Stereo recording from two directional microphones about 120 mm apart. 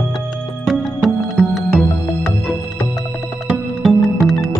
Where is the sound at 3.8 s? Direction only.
Centre (ahead or behind).